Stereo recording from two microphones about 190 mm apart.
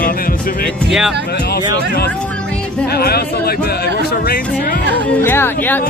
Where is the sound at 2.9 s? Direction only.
55° left (ahead or behind).